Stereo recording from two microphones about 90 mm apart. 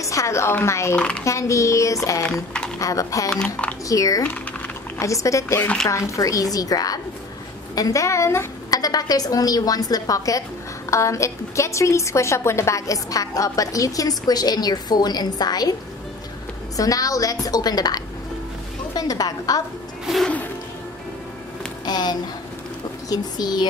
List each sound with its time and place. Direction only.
0.0 s a woman's voice: 35° left (ahead or behind)
0.9 s speech: 10° left (ahead or behind)
1.2 s a woman's voice: 35° left (ahead or behind)
3.3 s speech: 10° left (ahead or behind)
3.9 s a woman's voice: 40° left (ahead or behind)
4.2 s speech: 20° left (ahead or behind)
4.9 s a woman's voice: 35° left (ahead or behind)
8.6 s a woman's voice: 45° left (ahead or behind)
16.7 s a woman's voice: 40° left (ahead or behind)
20.1 s music: 5° right (ahead or behind)
21.8 s a woman's voice: 50° left (ahead or behind)